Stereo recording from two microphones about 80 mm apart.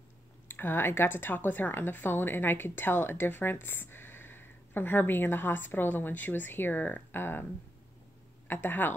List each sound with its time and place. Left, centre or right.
0.5 s a woman's voice: left
8.5 s a woman's voice: left